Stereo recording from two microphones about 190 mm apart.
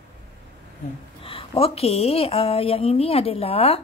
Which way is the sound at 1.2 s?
30° left (ahead or behind).